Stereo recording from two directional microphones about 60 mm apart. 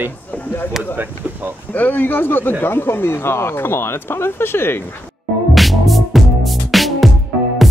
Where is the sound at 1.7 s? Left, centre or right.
Left.